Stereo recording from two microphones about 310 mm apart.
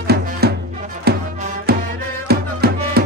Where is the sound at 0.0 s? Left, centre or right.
Right.